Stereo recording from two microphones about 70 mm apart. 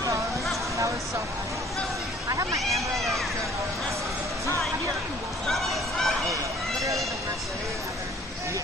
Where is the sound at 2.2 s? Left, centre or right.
Right.